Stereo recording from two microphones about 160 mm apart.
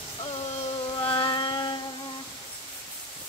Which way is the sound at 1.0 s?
30° left (ahead or behind).